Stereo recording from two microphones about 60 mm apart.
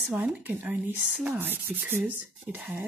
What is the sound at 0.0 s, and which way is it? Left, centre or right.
Speech, centre.